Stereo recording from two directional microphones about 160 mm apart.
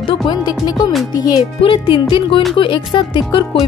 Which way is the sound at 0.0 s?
25° left (ahead or behind).